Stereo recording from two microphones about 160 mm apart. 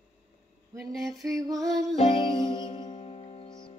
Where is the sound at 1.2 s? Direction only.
20° right (ahead or behind).